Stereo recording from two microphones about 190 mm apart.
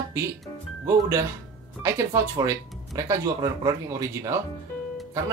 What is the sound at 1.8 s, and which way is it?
Speech, 15° right (ahead or behind).